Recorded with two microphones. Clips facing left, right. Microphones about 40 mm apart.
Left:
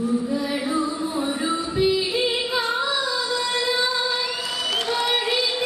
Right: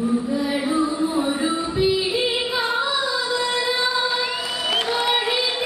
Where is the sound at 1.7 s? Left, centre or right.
Centre.